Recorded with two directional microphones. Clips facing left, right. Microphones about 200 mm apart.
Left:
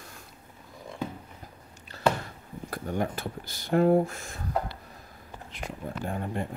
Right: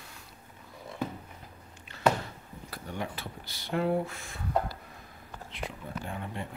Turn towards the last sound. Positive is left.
turn(degrees=45)  # may be behind; listen again after turning